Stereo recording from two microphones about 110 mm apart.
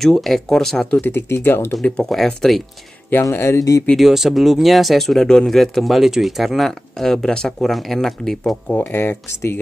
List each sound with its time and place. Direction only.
0.0 s speech: centre (ahead or behind)
1.0 s speech: 20° left (ahead or behind)
1.8 s speech: 5° left (ahead or behind)
3.1 s speech: 25° left (ahead or behind)
3.9 s speech: centre (ahead or behind)
8.9 s speech: 20° left (ahead or behind)